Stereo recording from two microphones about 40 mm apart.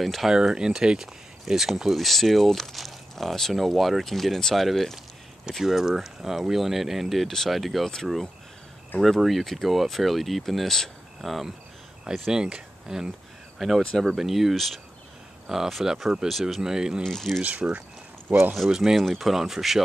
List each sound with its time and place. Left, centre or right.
0.0 s speech: centre
0.3 s speech: centre
5.6 s speech: centre
9.2 s speech: centre
12.0 s speech: centre
15.4 s speech: centre
16.3 s speech: centre
16.6 s speech: centre
17.0 s speech: centre
17.4 s speech: right
18.7 s speech: centre
18.9 s speech: centre